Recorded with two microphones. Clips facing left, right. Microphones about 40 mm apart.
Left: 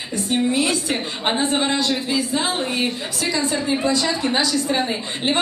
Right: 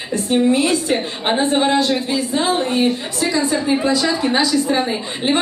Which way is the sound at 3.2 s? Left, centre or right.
Centre.